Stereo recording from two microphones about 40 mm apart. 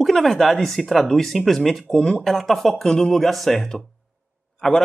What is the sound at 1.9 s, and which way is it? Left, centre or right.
Speech, left.